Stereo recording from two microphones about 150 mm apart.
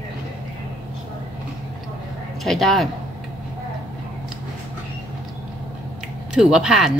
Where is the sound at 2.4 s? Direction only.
Centre (ahead or behind).